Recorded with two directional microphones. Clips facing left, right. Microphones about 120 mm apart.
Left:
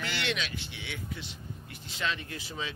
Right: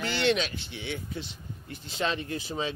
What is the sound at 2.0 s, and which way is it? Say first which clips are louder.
Speech: right 5 dB; 30° right (ahead or behind).